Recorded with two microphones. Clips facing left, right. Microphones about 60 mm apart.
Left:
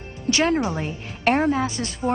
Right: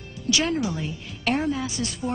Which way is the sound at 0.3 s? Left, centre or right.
Left.